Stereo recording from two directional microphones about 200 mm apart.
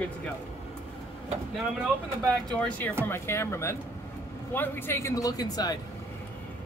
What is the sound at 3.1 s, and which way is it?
Speech, 15° left (ahead or behind).